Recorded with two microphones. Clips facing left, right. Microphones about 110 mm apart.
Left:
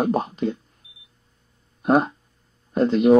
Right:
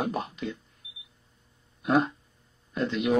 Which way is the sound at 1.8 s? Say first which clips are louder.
Left 5 dB; 40° left (ahead or behind).